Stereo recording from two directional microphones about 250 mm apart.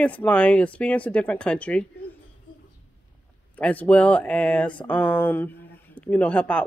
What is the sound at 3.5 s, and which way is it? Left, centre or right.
Speech, centre.